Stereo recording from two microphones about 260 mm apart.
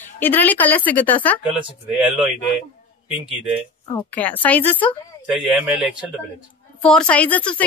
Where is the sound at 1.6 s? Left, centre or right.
Centre.